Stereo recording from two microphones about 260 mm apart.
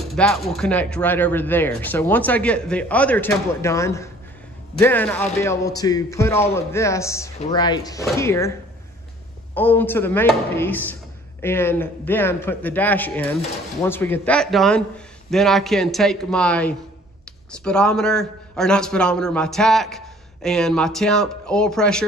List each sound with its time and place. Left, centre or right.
0.1 s a man's voice: centre